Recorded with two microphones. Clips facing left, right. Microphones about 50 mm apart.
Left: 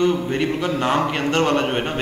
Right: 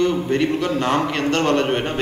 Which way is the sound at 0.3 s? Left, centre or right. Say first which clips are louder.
Right 2 dB; centre.